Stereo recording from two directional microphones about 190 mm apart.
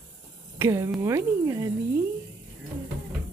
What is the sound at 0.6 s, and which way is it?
Speech, 15° right (ahead or behind).